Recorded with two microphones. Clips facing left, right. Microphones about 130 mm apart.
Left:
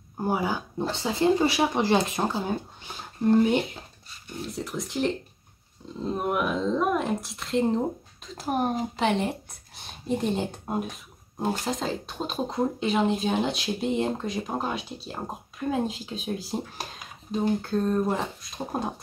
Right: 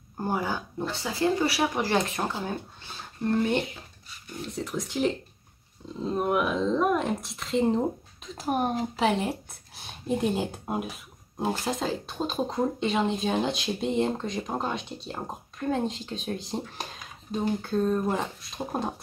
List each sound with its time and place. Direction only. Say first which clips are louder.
0.2 s speech: left 2 dB; 10° left (ahead or behind)
0.8 s speech: left 3 dB; 25° left (ahead or behind)
4.5 s speech: right 1 dB; centre (ahead or behind)